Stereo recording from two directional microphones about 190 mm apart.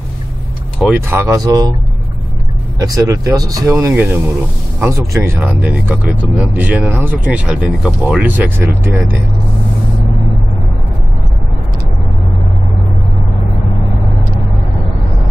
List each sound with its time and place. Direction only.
1.0 s speech: 15° right (ahead or behind)
2.8 s speech: 20° right (ahead or behind)